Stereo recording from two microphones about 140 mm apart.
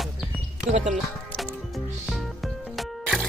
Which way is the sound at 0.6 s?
55° right (ahead or behind).